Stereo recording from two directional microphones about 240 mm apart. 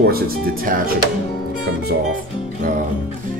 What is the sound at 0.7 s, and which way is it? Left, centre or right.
Speech, right.